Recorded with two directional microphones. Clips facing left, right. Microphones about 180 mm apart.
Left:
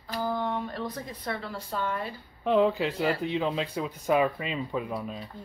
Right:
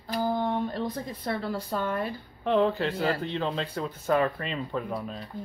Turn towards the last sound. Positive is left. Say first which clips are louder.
# even
turn(degrees=5)  # may be behind; listen again after turning